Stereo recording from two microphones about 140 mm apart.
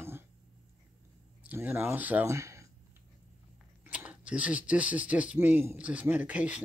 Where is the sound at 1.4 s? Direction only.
10° right (ahead or behind).